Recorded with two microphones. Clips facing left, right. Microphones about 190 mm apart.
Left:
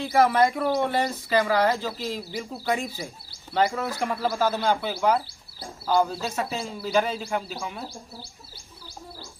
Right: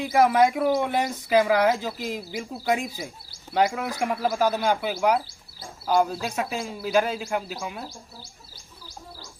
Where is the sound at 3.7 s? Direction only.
15° right (ahead or behind).